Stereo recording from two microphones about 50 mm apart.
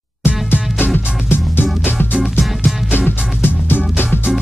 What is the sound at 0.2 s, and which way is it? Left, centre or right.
Music, left.